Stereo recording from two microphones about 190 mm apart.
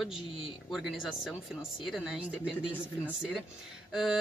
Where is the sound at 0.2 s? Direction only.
30° left (ahead or behind).